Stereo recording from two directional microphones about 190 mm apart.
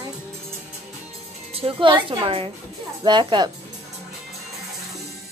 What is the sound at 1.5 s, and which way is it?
A woman's voice, 30° right (ahead or behind).